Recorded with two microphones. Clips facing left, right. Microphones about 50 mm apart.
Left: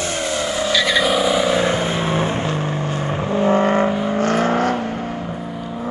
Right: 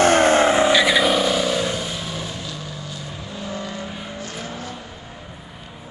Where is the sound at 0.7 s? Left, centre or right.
Centre; by 5.0 s left.